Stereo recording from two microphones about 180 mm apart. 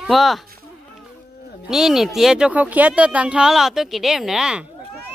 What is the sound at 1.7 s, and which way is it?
Speech, centre (ahead or behind).